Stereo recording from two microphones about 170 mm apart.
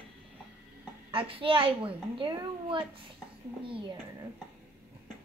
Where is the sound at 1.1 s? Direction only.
30° right (ahead or behind).